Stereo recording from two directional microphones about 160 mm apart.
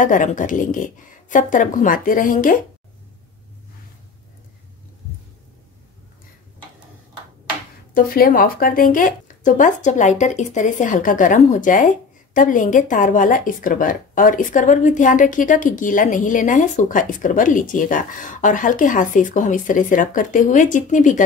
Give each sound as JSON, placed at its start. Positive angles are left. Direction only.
{"t": 0.0, "sound": "speech", "side_deg": 55}
{"t": 7.9, "sound": "speech", "side_deg": 60}